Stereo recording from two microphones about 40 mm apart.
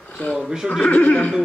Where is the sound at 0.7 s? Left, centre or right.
Left.